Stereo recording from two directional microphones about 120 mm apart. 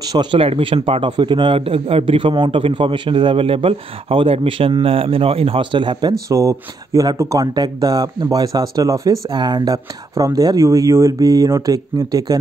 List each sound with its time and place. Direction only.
0.1 s a man's voice: 40° right (ahead or behind)